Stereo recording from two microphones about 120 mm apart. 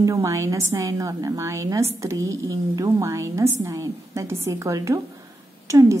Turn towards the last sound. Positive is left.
turn(degrees=-25)  # may be behind; listen again after turning